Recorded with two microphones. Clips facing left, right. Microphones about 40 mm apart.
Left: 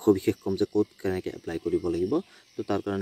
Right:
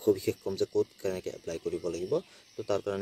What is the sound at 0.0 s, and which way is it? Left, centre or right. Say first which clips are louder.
Speech: left 5 dB; left.